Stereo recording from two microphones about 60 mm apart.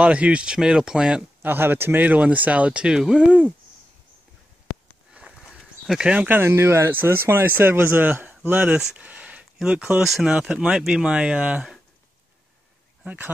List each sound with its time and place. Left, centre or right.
0.0 s speech: right
1.4 s speech: right; by 3.5 s centre
5.1 s a sound: centre
5.9 s speech: centre
6.2 s speech: right
8.7 s speech: centre
9.0 s a sound: right
9.7 s speech: right